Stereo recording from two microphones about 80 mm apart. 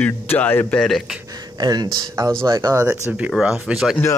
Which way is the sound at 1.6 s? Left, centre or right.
Right.